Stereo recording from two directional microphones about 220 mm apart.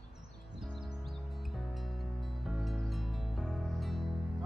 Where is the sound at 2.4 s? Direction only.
Centre (ahead or behind).